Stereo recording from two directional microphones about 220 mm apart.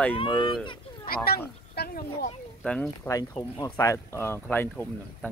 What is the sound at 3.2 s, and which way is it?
Speech, 15° left (ahead or behind).